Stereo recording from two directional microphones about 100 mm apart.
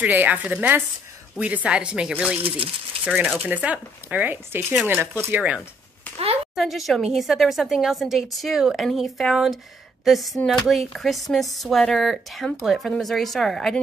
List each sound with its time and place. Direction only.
0.0 s speech: 15° right (ahead or behind)
6.5 s speech: centre (ahead or behind)